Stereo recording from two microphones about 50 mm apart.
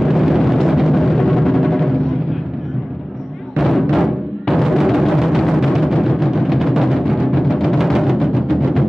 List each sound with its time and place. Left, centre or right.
0.0 s music: centre
3.5 s music: centre